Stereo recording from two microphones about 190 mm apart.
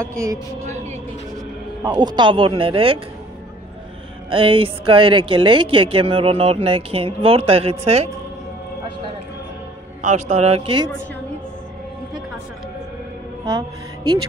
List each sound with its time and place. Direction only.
0.0 s speech: 15° right (ahead or behind)
0.6 s a sound: 35° right (ahead or behind)
1.9 s speech: 20° right (ahead or behind)
4.3 s speech: 30° right (ahead or behind)
10.0 s a man's voice: 40° right (ahead or behind)
13.6 s speech: 25° right (ahead or behind)